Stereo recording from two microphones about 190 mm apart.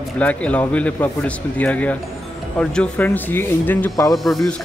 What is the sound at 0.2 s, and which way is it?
Speech, 5° left (ahead or behind).